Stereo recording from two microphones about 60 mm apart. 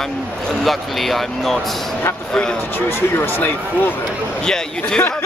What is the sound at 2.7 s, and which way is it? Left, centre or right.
Speech, left.